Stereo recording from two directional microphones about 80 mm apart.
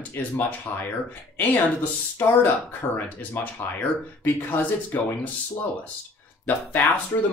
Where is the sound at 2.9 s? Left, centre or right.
Left.